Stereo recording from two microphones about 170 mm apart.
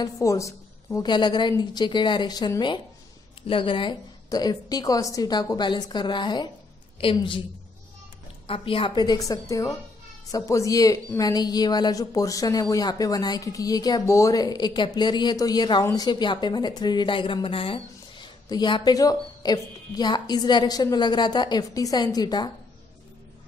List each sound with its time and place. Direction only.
0.0 s a woman's voice: 20° left (ahead or behind)
8.5 s a woman's voice: 30° left (ahead or behind)